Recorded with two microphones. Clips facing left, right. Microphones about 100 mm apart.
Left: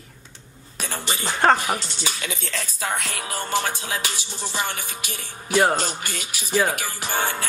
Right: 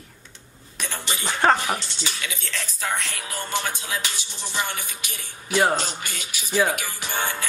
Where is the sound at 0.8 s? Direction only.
35° left (ahead or behind).